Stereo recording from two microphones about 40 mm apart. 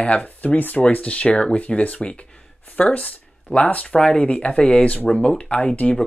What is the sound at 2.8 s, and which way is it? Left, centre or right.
Speech, left.